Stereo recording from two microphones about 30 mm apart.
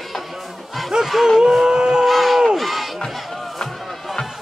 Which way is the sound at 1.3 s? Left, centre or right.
Centre.